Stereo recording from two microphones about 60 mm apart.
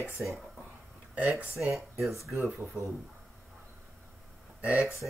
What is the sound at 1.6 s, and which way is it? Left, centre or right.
Speech, centre.